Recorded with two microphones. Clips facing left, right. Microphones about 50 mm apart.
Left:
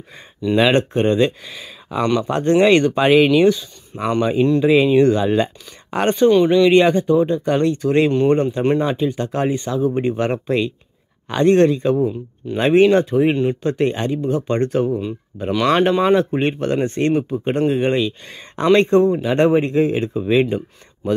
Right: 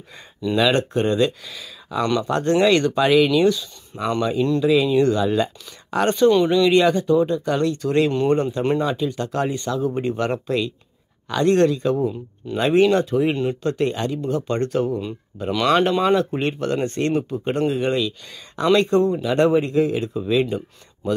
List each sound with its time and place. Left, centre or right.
0.1 s speech: centre
0.6 s speech: left
6.3 s speech: centre
6.7 s speech: left
13.3 s speech: centre
13.6 s speech: left
15.5 s speech: centre; by 21.1 s left